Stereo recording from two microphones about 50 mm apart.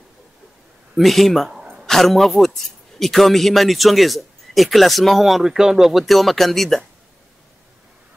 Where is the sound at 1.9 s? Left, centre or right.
Centre.